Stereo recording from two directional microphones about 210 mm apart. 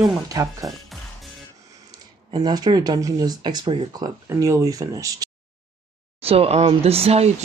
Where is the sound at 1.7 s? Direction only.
20° right (ahead or behind).